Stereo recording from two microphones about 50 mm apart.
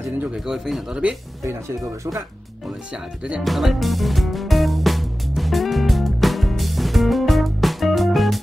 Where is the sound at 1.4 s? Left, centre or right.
Right.